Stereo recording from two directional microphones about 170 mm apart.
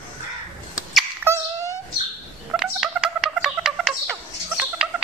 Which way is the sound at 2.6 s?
Centre (ahead or behind).